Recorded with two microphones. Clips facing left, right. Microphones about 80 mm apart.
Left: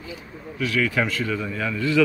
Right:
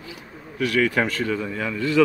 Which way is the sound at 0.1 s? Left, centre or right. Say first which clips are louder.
Left 3 dB; right.